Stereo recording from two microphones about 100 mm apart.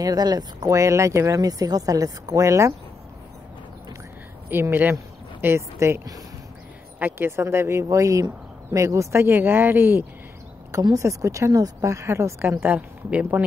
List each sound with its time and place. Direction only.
0.0 s speech: 40° right (ahead or behind)
4.5 s speech: 20° right (ahead or behind)
10.7 s speech: 35° right (ahead or behind); by 13.4 s 15° right (ahead or behind)